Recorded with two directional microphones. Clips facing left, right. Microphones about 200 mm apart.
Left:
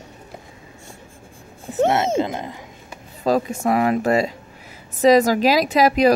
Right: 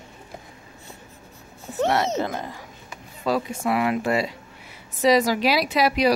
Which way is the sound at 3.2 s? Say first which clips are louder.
Left 5 dB; 45° left (ahead or behind).